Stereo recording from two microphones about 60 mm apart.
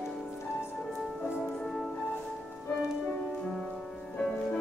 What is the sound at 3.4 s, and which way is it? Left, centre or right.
Music, centre.